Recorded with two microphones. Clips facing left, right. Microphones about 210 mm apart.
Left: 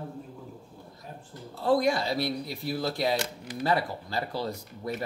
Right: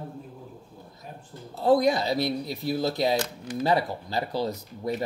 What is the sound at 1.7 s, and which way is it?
A man's voice, 20° right (ahead or behind).